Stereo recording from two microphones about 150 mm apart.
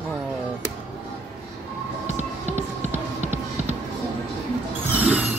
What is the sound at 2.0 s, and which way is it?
Music, 50° right (ahead or behind).